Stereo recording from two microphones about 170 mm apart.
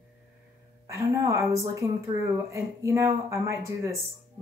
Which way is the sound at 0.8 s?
15° right (ahead or behind).